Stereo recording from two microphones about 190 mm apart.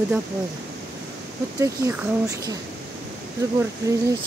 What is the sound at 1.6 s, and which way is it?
Speech, 15° right (ahead or behind).